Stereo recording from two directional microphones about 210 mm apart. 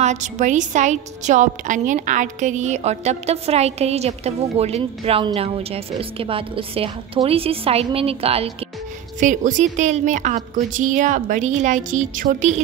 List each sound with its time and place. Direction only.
0.0 s a woman's voice: 35° right (ahead or behind)